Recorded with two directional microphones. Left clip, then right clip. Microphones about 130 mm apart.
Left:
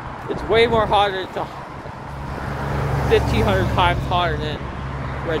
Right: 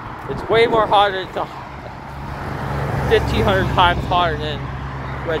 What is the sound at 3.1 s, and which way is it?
Speech, 5° left (ahead or behind).